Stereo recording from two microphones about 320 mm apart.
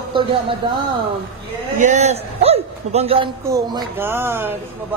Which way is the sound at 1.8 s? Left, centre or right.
Centre.